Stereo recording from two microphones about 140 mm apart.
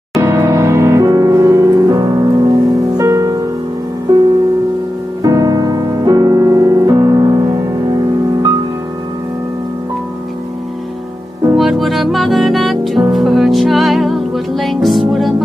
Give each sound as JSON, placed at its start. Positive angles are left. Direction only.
{"t": 0.2, "sound": "music", "side_deg": -20}
{"t": 5.2, "sound": "music", "side_deg": -25}
{"t": 11.5, "sound": "music", "side_deg": 0}